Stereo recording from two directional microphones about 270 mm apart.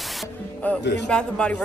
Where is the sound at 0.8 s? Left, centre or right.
Left.